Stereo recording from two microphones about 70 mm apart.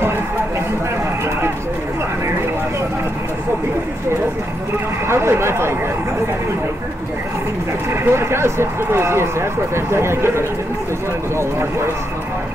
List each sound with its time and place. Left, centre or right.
5.0 s speech: right
7.9 s speech: right